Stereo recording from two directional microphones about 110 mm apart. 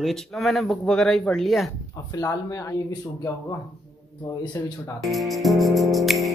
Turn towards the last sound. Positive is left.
turn(degrees=0)  # may be behind; listen again after turning